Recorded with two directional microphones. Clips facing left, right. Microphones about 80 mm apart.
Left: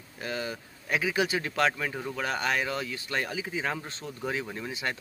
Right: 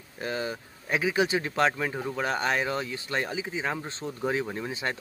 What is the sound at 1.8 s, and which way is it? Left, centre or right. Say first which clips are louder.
Speech: right 3 dB; centre.